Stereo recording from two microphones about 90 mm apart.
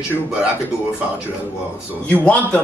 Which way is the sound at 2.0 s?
15° left (ahead or behind).